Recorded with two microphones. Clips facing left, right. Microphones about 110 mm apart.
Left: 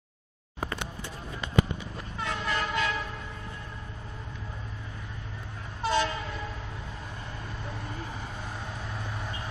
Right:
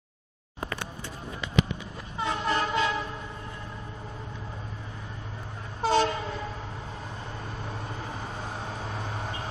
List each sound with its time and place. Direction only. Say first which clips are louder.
2.1 s vehicle: right 4 dB; 25° right (ahead or behind)
5.8 s train: right 3 dB; 30° right (ahead or behind)
8.4 s vehicle: right 3 dB; 30° right (ahead or behind)